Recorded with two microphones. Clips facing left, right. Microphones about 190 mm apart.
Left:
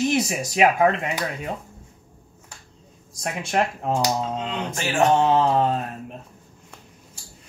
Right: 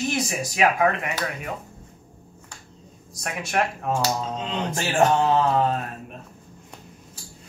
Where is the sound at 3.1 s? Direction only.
25° left (ahead or behind).